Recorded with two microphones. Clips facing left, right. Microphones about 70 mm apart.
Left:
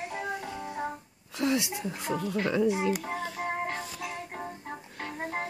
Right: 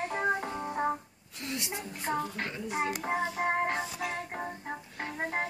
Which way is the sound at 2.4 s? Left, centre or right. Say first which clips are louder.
Left 12 dB; left.